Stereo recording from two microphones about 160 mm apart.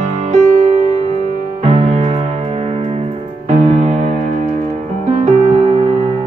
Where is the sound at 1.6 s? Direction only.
40° right (ahead or behind).